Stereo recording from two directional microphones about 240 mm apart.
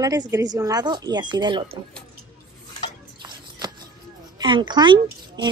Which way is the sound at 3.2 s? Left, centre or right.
Centre.